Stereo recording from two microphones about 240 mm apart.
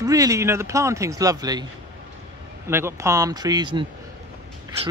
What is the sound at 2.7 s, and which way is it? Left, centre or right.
A man's voice, centre.